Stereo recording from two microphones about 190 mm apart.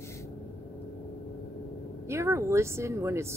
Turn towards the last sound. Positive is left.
turn(degrees=-15)  # may be behind; listen again after turning